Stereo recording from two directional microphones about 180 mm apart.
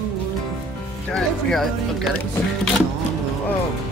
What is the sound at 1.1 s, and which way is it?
Speech, centre (ahead or behind).